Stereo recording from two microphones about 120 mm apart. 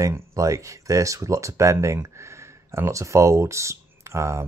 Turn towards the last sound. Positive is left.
turn(degrees=-25)  # may be behind; listen again after turning